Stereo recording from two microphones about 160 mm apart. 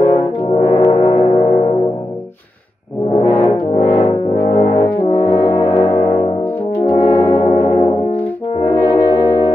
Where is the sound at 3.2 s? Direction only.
40° left (ahead or behind).